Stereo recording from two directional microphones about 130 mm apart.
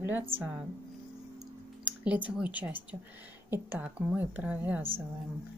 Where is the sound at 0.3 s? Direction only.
15° right (ahead or behind).